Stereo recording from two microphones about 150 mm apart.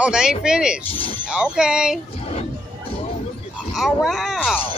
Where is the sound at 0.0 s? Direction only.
5° right (ahead or behind).